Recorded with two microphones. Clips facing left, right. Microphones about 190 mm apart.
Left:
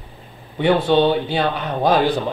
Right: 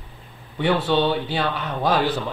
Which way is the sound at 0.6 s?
20° left (ahead or behind).